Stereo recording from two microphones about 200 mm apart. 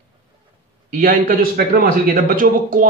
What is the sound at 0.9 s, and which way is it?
Speech, 45° right (ahead or behind).